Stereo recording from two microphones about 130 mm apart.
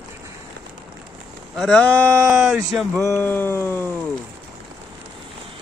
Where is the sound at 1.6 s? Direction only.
10° left (ahead or behind).